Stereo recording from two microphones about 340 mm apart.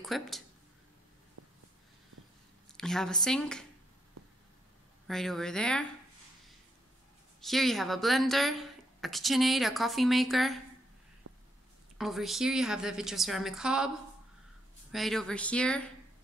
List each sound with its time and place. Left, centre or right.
0.0 s speech: centre
1.4 s a sound: right
2.8 s a woman's voice: centre
5.0 s a woman's voice: centre
7.4 s a woman's voice: centre
11.3 s a sound: right
12.0 s a woman's voice: centre
14.9 s a woman's voice: centre